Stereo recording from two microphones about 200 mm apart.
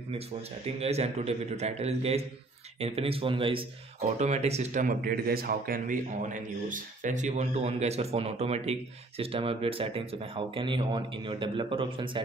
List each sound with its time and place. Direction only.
0.7 s a man's voice: 30° right (ahead or behind)